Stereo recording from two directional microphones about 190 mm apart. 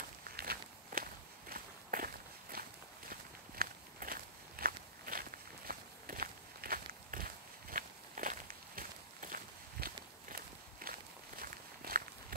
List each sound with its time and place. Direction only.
0.4 s walk: 50° right (ahead or behind)